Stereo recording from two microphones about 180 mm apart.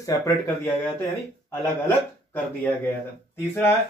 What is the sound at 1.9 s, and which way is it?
Speech, 10° left (ahead or behind).